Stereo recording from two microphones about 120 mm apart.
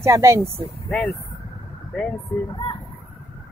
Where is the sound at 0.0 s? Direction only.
25° right (ahead or behind).